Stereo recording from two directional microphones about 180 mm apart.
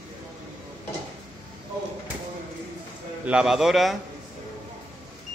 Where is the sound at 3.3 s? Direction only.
5° right (ahead or behind).